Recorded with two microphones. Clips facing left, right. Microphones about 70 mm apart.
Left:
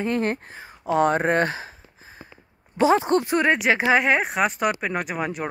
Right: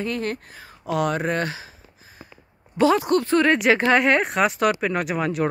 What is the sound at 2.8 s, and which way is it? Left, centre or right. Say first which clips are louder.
Speech: even; left.